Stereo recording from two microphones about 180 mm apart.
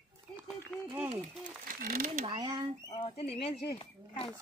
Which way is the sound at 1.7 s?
50° right (ahead or behind).